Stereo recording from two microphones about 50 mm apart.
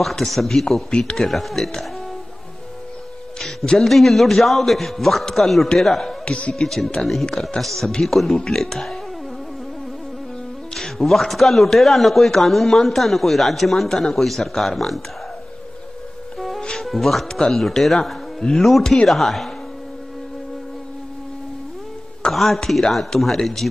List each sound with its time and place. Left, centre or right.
0.0 s a man's voice: centre
0.8 s speech: centre
1.1 s a man's voice: centre
3.3 s a man's voice: centre
6.2 s speech: left
6.6 s a man's voice: centre
10.7 s a man's voice: centre
16.3 s music: centre
16.7 s speech: centre
17.3 s speech: centre
17.6 s a man's voice: centre
22.3 s a sound: centre
22.7 s a man's voice: centre